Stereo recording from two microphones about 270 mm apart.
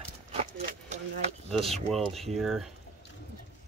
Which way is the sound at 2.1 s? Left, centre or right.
Centre.